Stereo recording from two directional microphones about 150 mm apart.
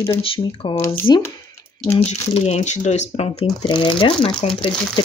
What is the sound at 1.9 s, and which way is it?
Speech, 45° left (ahead or behind).